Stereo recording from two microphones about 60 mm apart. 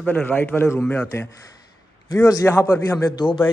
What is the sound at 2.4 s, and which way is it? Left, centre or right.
Speech, left.